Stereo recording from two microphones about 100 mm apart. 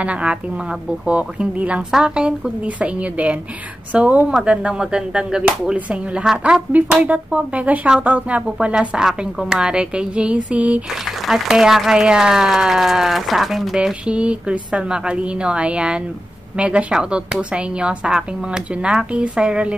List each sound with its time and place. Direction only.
0.0 s speech: 10° right (ahead or behind)
11.1 s speech: centre (ahead or behind)